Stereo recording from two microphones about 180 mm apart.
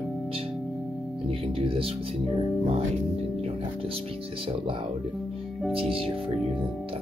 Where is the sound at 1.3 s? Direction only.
30° right (ahead or behind).